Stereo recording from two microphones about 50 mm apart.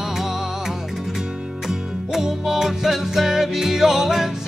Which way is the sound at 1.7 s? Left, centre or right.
Centre.